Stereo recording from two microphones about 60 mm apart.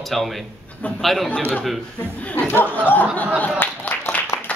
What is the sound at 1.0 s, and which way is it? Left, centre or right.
Speech, centre.